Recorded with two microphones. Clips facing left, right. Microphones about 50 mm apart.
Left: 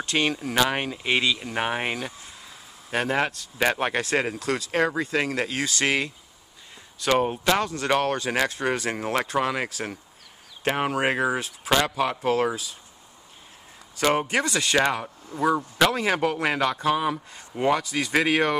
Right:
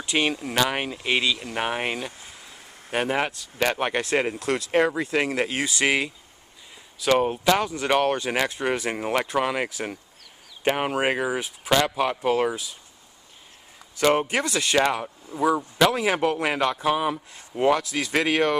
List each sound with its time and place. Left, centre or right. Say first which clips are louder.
0.0 s a man's voice: even; centre
2.9 s speech: even; centre
4.4 s a man's voice: right 2 dB; right; by 7.6 s centre
7.6 s speech: right 2 dB; centre
13.9 s a man's voice: right 1 dB; centre